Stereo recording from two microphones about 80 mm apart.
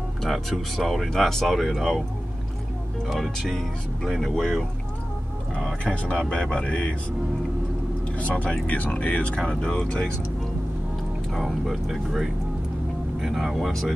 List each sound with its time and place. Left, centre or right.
0.2 s speech: centre
3.1 s speech: centre
8.2 s speech: centre
11.3 s speech: centre